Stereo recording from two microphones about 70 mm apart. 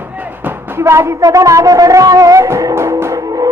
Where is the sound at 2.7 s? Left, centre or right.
Right.